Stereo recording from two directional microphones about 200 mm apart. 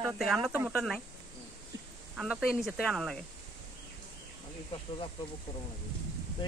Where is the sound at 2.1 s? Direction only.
5° right (ahead or behind).